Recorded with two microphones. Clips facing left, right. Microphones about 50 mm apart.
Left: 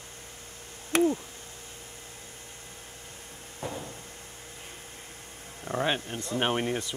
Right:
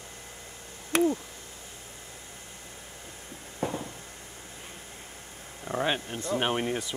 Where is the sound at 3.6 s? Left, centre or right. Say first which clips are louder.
Right 5 dB; right.